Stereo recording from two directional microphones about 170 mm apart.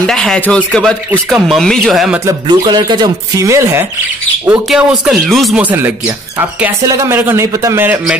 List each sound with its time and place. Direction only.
0.0 s speech: 5° left (ahead or behind)
2.2 s speech: 25° right (ahead or behind)
4.6 s speech: 5° right (ahead or behind)